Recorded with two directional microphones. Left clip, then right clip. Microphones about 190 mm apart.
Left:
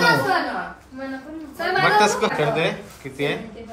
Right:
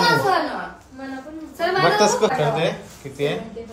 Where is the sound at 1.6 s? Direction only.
15° right (ahead or behind).